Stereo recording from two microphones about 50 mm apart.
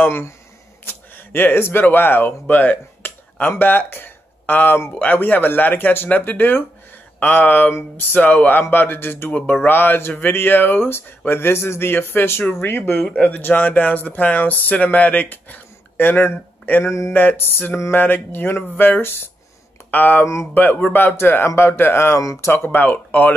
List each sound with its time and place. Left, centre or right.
0.8 s speech: left
2.4 s speech: left
9.3 s speech: left
9.7 s speech: left
16.8 s speech: left
17.1 s speech: left
19.9 s speech: left
22.5 s speech: left
22.8 s speech: left